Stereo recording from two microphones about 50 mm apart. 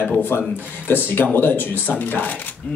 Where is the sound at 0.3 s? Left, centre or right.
Left.